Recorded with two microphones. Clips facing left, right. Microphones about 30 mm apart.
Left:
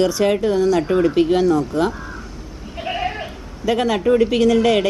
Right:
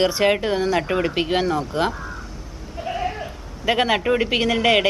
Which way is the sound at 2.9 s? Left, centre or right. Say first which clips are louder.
Left 2 dB; left.